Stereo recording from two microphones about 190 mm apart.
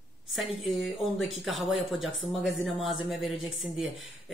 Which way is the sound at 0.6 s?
Centre (ahead or behind).